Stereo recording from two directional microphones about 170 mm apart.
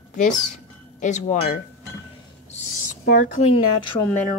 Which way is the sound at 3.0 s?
55° left (ahead or behind).